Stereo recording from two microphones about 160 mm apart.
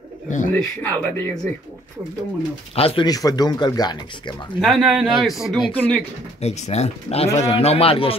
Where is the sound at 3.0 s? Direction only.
25° left (ahead or behind).